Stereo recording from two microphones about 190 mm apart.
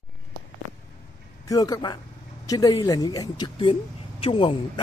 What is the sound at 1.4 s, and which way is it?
A man's voice, 20° left (ahead or behind).